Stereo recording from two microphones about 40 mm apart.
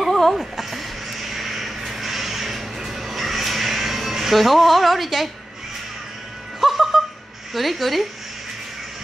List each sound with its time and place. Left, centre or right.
0.1 s a sound: centre
6.6 s music: centre
7.5 s a woman's voice: centre